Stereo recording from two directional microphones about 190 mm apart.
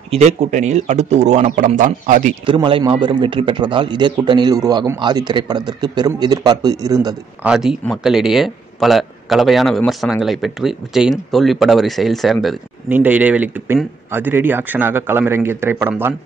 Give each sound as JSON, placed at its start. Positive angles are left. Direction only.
{"t": 0.1, "sound": "speech", "side_deg": -35}
{"t": 2.4, "sound": "a man's voice", "side_deg": -25}
{"t": 7.4, "sound": "a man's voice", "side_deg": 0}